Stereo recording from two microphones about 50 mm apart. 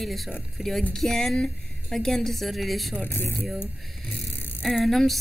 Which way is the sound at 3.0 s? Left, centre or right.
Left.